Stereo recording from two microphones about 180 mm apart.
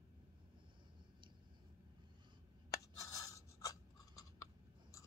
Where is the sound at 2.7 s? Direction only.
20° left (ahead or behind).